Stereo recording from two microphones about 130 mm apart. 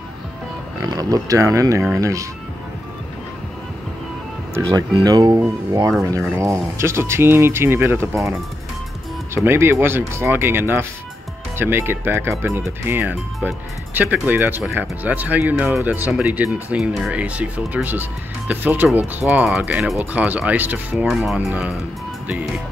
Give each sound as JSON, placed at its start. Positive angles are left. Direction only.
{"t": 0.8, "sound": "speech", "side_deg": -30}
{"t": 4.6, "sound": "speech", "side_deg": -30}
{"t": 21.1, "sound": "speech", "side_deg": 0}